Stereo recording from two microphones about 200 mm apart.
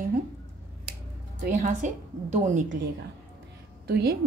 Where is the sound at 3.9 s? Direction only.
50° right (ahead or behind).